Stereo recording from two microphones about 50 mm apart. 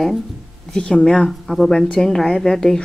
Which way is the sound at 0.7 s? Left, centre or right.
Left.